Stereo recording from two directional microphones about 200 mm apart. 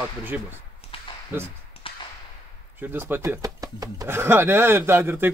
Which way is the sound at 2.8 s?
10° right (ahead or behind).